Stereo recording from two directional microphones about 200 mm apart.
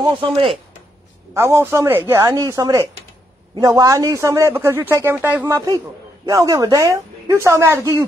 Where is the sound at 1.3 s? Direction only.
15° right (ahead or behind).